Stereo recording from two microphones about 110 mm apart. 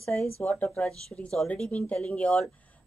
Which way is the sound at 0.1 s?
15° left (ahead or behind).